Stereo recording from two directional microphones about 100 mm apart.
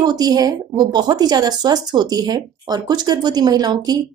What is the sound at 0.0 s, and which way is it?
Speech, 40° right (ahead or behind).